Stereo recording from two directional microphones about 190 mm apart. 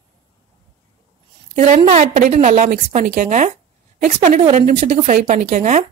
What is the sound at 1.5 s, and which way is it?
A woman's voice, 40° right (ahead or behind).